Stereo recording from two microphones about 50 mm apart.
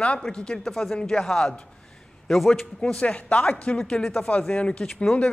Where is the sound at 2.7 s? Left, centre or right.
Centre.